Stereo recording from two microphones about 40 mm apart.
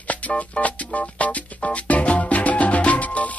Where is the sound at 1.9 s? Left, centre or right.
Left.